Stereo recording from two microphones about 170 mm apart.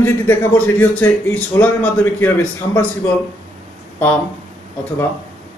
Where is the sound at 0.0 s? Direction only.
15° left (ahead or behind).